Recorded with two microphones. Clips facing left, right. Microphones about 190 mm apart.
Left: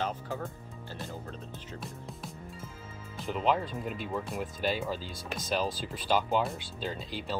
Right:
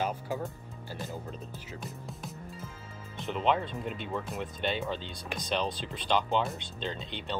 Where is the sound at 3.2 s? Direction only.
Centre (ahead or behind).